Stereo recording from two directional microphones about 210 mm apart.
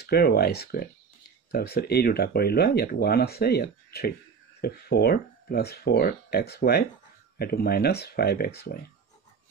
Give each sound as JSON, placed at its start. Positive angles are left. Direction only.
{"t": 0.0, "sound": "speech", "side_deg": 50}